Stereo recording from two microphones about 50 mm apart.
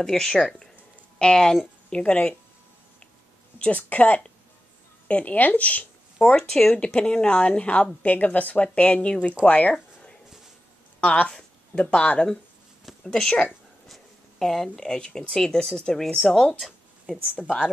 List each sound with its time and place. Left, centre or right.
0.0 s a woman's voice: centre
3.7 s speech: left
6.3 s a woman's voice: centre
9.5 s a sound: left
11.0 s speech: left
13.8 s speech: centre
17.4 s a woman's voice: left